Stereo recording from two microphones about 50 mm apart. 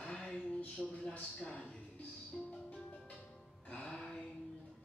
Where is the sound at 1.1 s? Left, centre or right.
Left.